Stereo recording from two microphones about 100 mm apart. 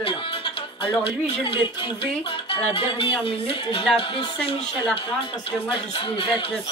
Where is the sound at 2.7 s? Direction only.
65° left (ahead or behind).